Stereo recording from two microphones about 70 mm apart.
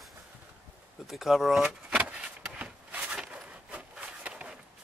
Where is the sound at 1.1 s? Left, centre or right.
Centre.